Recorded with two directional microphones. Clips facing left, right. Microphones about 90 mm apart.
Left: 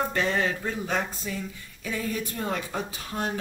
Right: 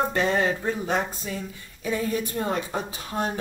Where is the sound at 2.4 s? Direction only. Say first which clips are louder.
Right 3 dB; 30° right (ahead or behind).